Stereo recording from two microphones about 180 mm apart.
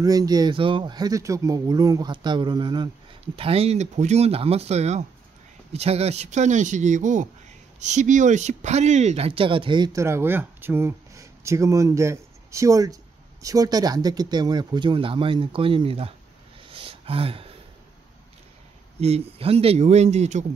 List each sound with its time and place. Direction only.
0.0 s speech: 20° right (ahead or behind)
16.6 s a sound: 30° right (ahead or behind)
18.9 s speech: 35° right (ahead or behind)